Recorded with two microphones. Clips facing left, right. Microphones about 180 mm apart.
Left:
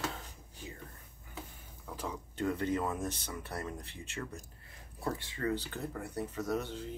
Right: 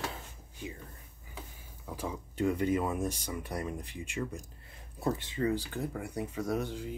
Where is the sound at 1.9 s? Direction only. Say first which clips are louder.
Right 2 dB; 10° right (ahead or behind).